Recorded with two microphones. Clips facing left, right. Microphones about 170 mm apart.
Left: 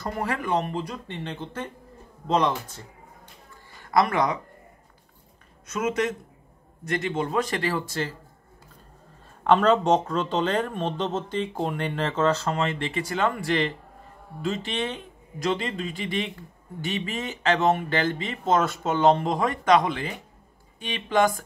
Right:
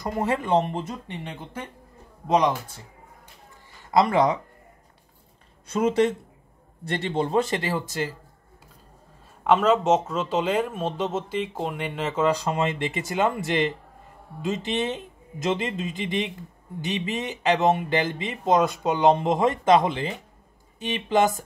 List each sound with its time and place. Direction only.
0.0 s a man's voice: 20° right (ahead or behind)
3.9 s a man's voice: 25° right (ahead or behind)
5.7 s a man's voice: 30° right (ahead or behind)
9.4 s a man's voice: 5° right (ahead or behind); by 21.3 s 20° right (ahead or behind)